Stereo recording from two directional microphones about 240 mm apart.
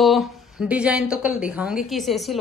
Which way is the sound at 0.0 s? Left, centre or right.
Centre.